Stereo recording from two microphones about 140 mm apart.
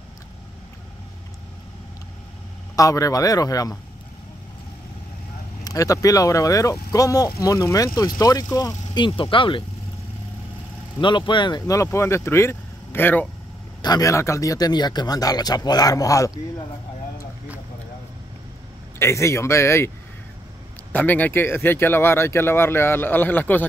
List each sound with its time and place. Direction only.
2.7 s speech: 25° left (ahead or behind)
5.6 s speech: 25° left (ahead or behind)
11.0 s speech: 35° left (ahead or behind); by 13.3 s 15° left (ahead or behind)
13.8 s speech: 25° left (ahead or behind)
18.9 s speech: 20° left (ahead or behind)
20.9 s speech: 10° left (ahead or behind)